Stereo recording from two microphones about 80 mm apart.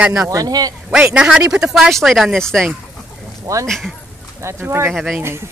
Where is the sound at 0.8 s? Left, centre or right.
Centre.